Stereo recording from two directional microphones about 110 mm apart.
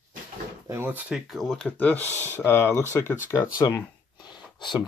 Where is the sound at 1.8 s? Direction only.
15° left (ahead or behind).